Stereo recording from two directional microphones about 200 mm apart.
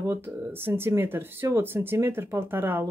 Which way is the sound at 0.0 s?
10° right (ahead or behind).